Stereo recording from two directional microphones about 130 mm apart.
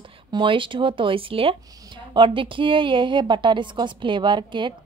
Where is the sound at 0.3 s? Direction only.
40° right (ahead or behind).